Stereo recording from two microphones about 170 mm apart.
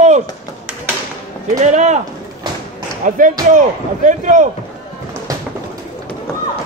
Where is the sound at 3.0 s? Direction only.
50° right (ahead or behind).